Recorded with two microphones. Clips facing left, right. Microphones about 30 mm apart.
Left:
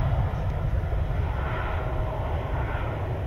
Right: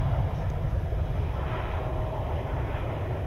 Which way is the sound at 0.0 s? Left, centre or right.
Centre.